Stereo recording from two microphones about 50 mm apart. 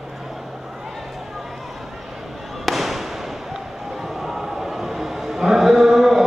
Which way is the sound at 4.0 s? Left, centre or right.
Centre.